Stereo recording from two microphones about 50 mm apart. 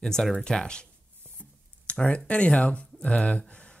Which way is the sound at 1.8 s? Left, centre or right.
Left.